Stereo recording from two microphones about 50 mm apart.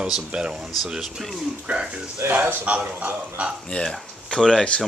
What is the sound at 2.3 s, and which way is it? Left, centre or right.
A man's voice, right.